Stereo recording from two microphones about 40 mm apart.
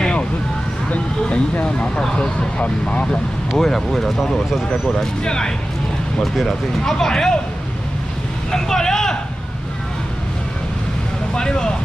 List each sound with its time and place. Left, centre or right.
0.8 s vehicle: left
2.0 s speech: centre
2.6 s speech: left
3.1 s speech: centre
4.8 s speech: centre
6.2 s speech: centre
6.8 s speech: centre
8.5 s vehicle: centre
11.3 s speech: centre